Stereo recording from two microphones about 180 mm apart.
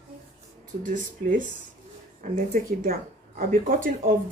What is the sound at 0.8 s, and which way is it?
Speech, 50° right (ahead or behind).